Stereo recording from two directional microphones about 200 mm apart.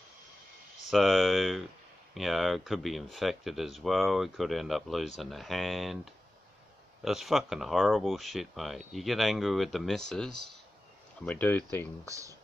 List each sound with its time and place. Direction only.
0.8 s speech: centre (ahead or behind)
7.1 s speech: centre (ahead or behind)
12.1 s speech: 15° right (ahead or behind)